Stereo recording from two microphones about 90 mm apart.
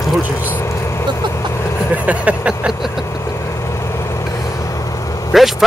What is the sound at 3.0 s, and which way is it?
Vehicle, 35° left (ahead or behind).